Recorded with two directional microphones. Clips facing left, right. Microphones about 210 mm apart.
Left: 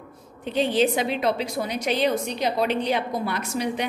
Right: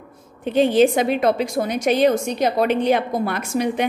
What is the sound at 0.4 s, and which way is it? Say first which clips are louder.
A woman's voice: right 6 dB; 50° right (ahead or behind).